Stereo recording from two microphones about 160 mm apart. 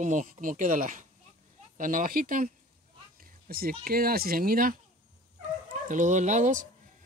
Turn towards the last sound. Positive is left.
turn(degrees=-50)  # may be behind; listen again after turning